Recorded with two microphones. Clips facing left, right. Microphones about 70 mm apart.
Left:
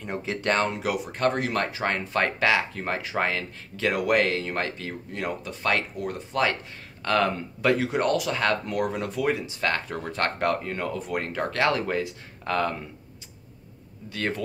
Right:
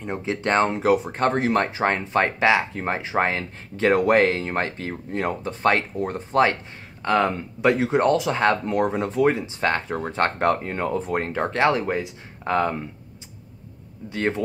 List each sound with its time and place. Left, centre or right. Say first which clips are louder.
0.0 s speech: right 3 dB; right
7.0 s speech: right 3 dB; right
14.0 s speech: right 5 dB; right